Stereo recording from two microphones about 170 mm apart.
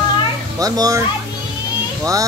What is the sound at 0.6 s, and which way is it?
Speech, 20° right (ahead or behind).